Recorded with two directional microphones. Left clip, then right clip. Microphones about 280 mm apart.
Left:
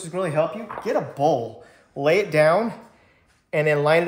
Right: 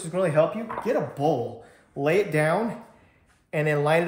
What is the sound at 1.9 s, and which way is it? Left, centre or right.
Speech, centre.